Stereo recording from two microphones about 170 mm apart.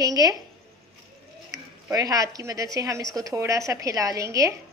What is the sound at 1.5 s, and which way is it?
A woman's voice, 20° right (ahead or behind).